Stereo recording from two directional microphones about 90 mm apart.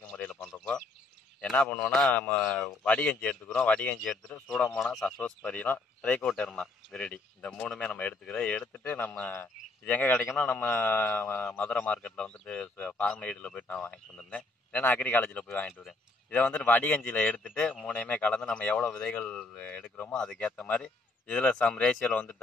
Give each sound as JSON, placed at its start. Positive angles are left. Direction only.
{"t": 0.1, "sound": "bird", "side_deg": 10}
{"t": 1.6, "sound": "speech", "side_deg": 5}
{"t": 4.6, "sound": "mantra", "side_deg": 30}
{"t": 4.8, "sound": "speech", "side_deg": 5}
{"t": 5.2, "sound": "speech", "side_deg": 15}
{"t": 8.8, "sound": "mantra", "side_deg": 20}
{"t": 10.3, "sound": "speech", "side_deg": 15}
{"t": 10.6, "sound": "mantra", "side_deg": 25}
{"t": 11.5, "sound": "speech", "side_deg": 15}